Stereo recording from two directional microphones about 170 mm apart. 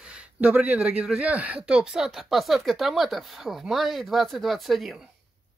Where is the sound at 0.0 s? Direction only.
5° right (ahead or behind).